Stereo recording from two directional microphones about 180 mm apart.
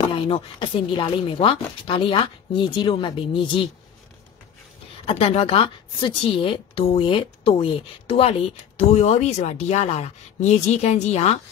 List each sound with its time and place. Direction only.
0.1 s speech: 30° left (ahead or behind)
5.0 s a woman's voice: 35° left (ahead or behind)